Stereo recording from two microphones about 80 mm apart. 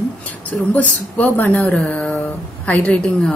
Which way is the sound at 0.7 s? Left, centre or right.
Left.